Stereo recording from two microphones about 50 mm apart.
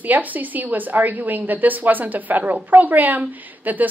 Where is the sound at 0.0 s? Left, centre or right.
Right.